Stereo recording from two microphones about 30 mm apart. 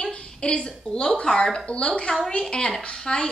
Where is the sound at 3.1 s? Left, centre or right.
Left.